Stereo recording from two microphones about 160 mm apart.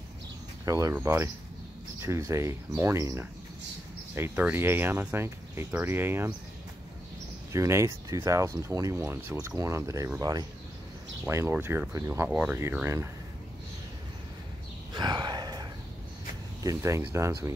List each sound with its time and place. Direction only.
0.7 s speech: 20° right (ahead or behind)
7.5 s speech: 20° right (ahead or behind)
15.0 s a sound: 25° right (ahead or behind)
16.6 s speech: 20° right (ahead or behind)